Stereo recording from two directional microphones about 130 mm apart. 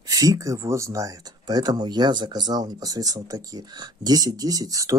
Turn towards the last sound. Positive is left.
turn(degrees=-25)  # may be behind; listen again after turning